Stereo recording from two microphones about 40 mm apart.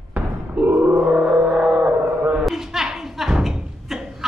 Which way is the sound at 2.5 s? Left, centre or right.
Centre.